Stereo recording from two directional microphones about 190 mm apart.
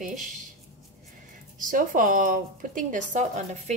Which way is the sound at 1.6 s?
45° right (ahead or behind).